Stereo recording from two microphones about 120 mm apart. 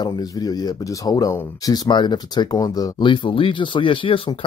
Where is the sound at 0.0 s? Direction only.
35° left (ahead or behind).